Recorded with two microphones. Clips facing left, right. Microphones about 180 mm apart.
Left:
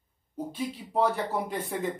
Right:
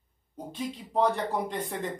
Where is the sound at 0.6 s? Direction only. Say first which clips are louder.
Even; 5° left (ahead or behind).